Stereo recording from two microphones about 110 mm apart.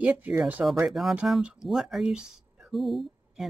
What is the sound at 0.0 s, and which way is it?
Speech, 15° right (ahead or behind).